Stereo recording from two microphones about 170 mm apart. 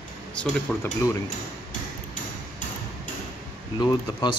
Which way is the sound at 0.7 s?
Centre (ahead or behind).